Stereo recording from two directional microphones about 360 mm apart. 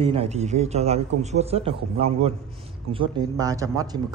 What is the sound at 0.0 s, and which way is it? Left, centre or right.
Speech, centre.